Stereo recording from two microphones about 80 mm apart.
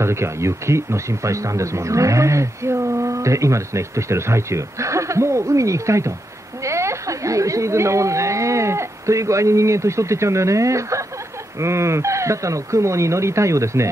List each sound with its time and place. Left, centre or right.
0.0 s speech: right